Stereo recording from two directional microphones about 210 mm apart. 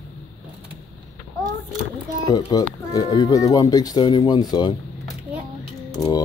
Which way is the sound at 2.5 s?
20° left (ahead or behind).